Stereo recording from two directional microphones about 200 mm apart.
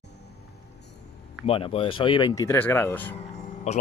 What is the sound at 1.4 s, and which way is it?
Speech, 30° left (ahead or behind).